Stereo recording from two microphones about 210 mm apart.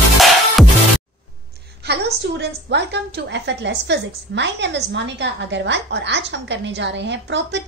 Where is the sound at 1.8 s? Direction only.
55° right (ahead or behind).